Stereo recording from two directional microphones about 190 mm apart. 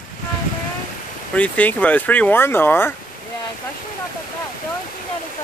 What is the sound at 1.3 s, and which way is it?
Speech, 10° left (ahead or behind).